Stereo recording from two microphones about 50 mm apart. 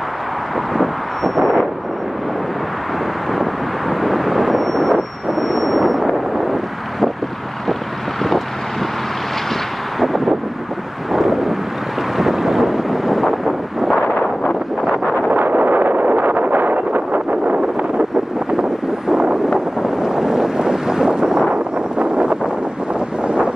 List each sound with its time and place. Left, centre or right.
0.7 s vehicle: centre
4.0 s vehicle: centre
9.9 s a sound: centre
11.1 s wind noise: centre
15.3 s wind noise: right
17.3 s wind noise: right
18.6 s vehicle: centre
19.5 s wind noise: centre